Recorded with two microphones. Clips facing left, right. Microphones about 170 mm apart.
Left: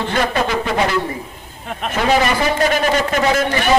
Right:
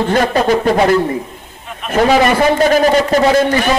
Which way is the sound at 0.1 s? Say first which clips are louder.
Right 5 dB; 40° right (ahead or behind).